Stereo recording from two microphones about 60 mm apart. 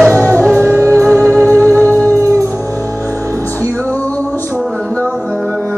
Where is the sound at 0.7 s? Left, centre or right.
Right.